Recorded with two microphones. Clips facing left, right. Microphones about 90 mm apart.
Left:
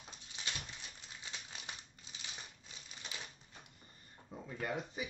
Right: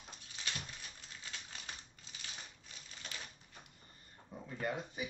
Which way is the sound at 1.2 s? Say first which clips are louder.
Even; 20° left (ahead or behind).